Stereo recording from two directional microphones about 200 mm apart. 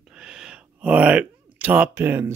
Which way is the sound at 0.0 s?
5° right (ahead or behind).